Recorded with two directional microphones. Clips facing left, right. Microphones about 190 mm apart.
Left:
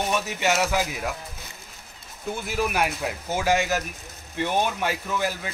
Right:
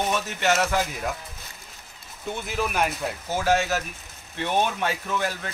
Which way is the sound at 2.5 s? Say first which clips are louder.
Left 1 dB; 5° left (ahead or behind).